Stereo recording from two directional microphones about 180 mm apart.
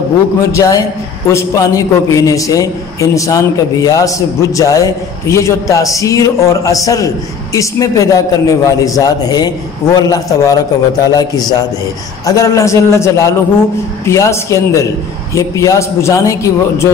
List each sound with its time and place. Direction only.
0.5 s a man's voice: 20° left (ahead or behind)